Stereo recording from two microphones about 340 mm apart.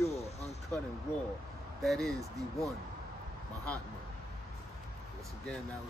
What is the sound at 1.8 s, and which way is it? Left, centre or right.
Speech, centre.